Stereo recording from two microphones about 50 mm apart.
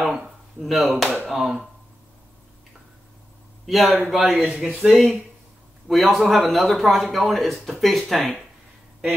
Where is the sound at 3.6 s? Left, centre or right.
Centre.